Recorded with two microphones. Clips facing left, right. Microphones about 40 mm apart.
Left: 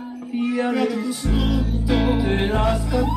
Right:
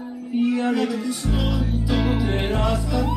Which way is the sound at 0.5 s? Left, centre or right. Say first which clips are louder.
Even; centre.